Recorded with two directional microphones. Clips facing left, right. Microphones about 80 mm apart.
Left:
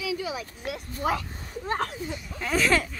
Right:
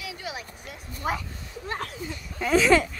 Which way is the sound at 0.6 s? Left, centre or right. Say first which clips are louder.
Left 9 dB; left.